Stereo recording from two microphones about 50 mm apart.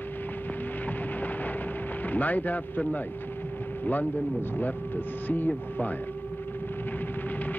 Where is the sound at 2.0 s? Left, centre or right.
Left.